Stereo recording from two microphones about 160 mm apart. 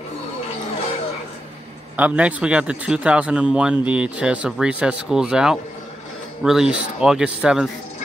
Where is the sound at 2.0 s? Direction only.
10° right (ahead or behind).